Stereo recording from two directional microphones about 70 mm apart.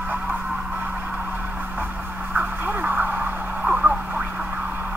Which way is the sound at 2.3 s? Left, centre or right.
Right.